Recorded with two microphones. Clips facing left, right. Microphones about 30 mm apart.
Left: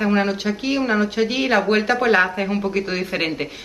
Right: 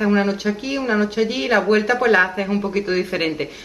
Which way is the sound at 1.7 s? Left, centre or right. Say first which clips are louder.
Right 1 dB; left.